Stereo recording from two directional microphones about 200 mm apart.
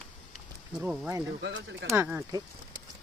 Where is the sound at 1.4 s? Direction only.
60° right (ahead or behind).